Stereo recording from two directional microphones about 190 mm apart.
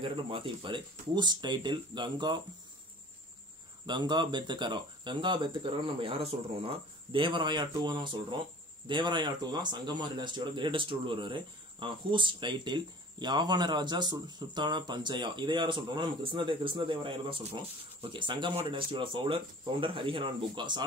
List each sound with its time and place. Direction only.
0.0 s a man's voice: 25° right (ahead or behind)
3.8 s a man's voice: 25° right (ahead or behind)